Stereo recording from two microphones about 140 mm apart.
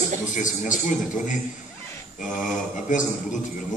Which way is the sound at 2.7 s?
65° left (ahead or behind).